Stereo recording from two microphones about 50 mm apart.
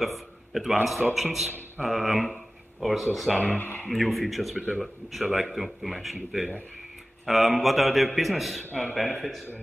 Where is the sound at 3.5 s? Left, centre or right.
Left.